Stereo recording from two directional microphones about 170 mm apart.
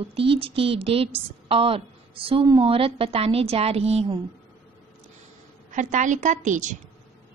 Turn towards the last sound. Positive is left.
turn(degrees=-45)  # may be behind; listen again after turning